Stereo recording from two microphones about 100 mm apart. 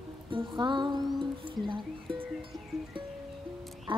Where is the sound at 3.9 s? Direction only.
60° right (ahead or behind).